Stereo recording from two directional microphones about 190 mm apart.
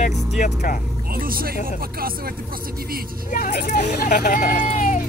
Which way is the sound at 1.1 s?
50° right (ahead or behind).